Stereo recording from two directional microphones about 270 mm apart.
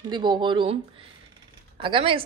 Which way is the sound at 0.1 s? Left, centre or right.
Centre.